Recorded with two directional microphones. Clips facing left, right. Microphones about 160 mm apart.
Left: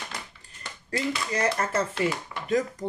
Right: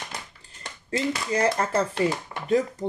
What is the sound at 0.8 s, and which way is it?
Speech, 25° right (ahead or behind).